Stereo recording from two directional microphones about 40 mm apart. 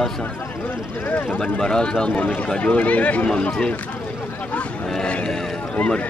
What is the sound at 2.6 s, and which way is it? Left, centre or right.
Speech, left.